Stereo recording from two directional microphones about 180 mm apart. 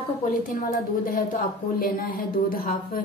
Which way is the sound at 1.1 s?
50° left (ahead or behind).